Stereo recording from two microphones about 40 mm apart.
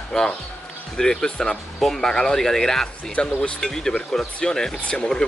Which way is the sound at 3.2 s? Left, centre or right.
Left.